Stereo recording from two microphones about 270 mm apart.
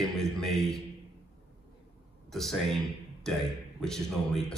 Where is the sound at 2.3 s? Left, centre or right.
Centre.